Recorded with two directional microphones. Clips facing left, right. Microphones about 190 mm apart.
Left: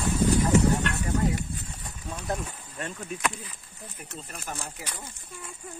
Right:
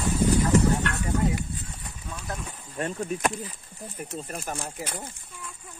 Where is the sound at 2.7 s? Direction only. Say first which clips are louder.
Right 7 dB; 40° right (ahead or behind).